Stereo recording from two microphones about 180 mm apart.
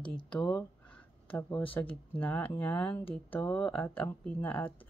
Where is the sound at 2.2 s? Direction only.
10° left (ahead or behind).